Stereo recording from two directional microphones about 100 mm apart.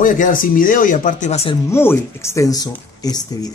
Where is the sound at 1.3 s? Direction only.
75° left (ahead or behind).